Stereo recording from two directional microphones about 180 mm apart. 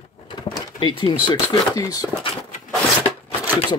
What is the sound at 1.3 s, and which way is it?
Speech, 20° left (ahead or behind).